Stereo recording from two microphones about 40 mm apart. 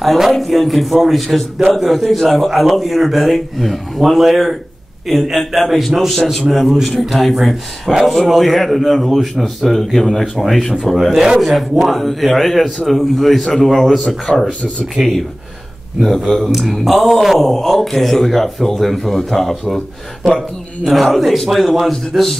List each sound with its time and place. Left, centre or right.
0.3 s a man's voice: centre
5.1 s a man's voice: centre
11.0 s a man's voice: centre
14.3 s speech: centre
16.3 s a man's voice: centre
20.8 s a man's voice: centre